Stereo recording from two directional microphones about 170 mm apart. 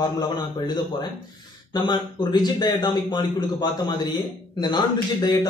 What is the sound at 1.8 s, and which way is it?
A man's voice, 25° left (ahead or behind).